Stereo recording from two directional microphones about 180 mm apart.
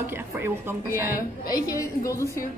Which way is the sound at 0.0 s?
15° right (ahead or behind).